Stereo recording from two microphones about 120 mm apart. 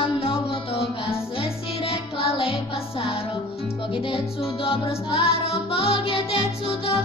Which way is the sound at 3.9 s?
50° left (ahead or behind).